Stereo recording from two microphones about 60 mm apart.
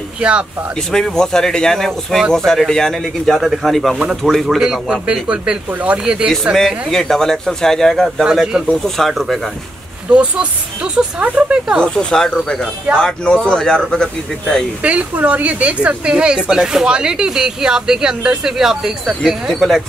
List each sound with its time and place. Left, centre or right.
0.2 s speech: centre
1.0 s speech: centre
4.6 s speech: centre
6.5 s speech: centre
8.2 s speech: centre
8.8 s speech: centre
10.0 s speech: centre
11.8 s speech: centre
14.8 s speech: right; by 19.8 s centre